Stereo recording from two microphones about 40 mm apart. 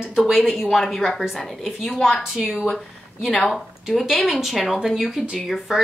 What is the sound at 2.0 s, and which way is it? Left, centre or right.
A woman's voice, centre.